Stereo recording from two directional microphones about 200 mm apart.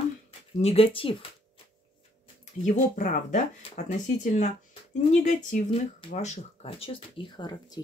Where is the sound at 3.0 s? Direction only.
40° left (ahead or behind).